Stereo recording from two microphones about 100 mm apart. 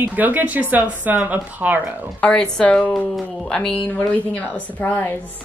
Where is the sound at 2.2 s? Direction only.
10° left (ahead or behind).